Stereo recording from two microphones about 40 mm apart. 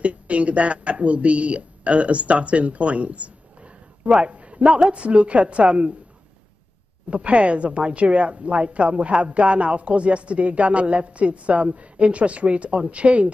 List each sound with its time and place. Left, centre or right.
0.0 s speech: right
7.1 s a woman's voice: right